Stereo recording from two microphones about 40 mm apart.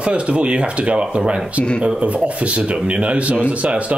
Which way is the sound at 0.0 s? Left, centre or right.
Right.